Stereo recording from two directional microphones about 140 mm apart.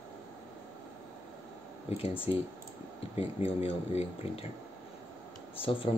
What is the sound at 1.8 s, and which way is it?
Speech, 45° left (ahead or behind).